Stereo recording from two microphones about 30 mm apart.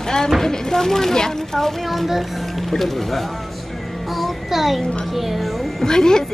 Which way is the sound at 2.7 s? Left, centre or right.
Centre.